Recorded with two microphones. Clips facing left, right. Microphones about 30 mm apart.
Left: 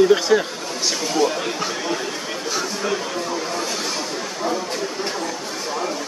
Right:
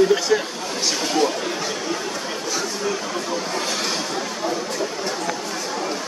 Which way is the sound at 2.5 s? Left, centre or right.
Left.